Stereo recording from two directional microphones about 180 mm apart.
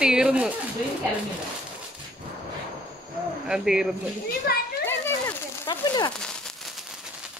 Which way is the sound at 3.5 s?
5° right (ahead or behind).